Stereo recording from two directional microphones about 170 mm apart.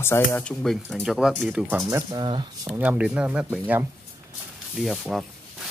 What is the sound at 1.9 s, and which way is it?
Speech, 15° right (ahead or behind).